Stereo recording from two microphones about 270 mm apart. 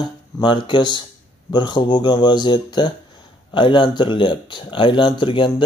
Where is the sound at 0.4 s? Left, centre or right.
Centre.